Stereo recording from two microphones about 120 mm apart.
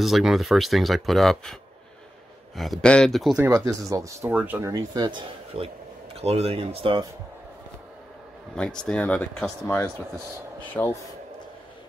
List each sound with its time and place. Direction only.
0.0 s speech: centre (ahead or behind)
3.3 s speech: 25° right (ahead or behind)
4.3 s speech: 15° right (ahead or behind)
4.6 s speech: 25° right (ahead or behind)
5.5 s speech: 50° right (ahead or behind)
8.5 s speech: 5° left (ahead or behind)
9.7 s speech: 20° left (ahead or behind)